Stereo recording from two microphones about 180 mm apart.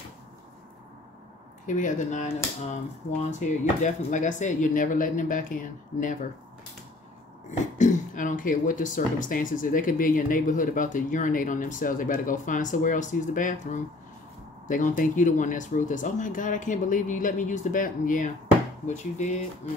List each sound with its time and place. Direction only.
1.7 s speech: 45° left (ahead or behind)
3.3 s speech: 40° left (ahead or behind)
7.7 s speech: 45° left (ahead or behind)